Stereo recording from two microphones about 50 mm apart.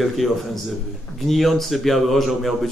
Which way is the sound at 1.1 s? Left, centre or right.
Centre.